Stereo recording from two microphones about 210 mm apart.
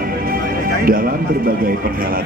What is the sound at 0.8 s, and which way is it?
Speech, 45° right (ahead or behind).